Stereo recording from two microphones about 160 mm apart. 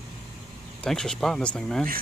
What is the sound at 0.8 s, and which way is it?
Speech, 5° left (ahead or behind).